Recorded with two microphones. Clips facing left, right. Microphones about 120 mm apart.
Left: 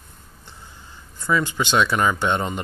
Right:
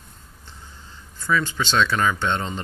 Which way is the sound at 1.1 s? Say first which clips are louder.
Left 1 dB; 15° left (ahead or behind).